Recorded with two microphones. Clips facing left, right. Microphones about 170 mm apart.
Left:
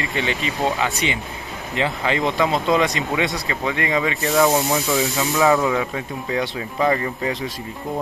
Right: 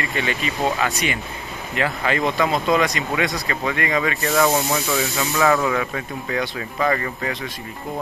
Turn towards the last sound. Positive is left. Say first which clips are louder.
# left 2 dB
turn(degrees=20)  # may be behind; listen again after turning